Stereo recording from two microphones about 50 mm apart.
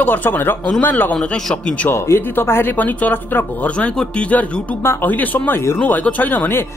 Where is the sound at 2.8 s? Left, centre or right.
Left.